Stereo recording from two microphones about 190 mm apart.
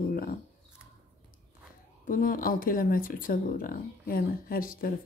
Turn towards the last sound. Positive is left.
turn(degrees=50)  # may be behind; listen again after turning